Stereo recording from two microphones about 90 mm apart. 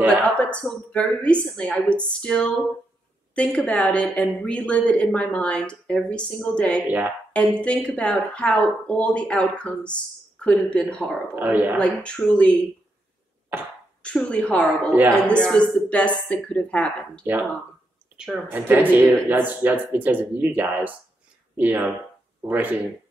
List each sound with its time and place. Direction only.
0.2 s a woman's voice: 10° left (ahead or behind)
11.3 s speech: 20° right (ahead or behind)
11.7 s a woman's voice: 10° left (ahead or behind)
13.5 s speech: 20° right (ahead or behind)
14.0 s a woman's voice: 10° left (ahead or behind)
18.1 s a sound: 10° right (ahead or behind)
18.5 s speech: 20° right (ahead or behind)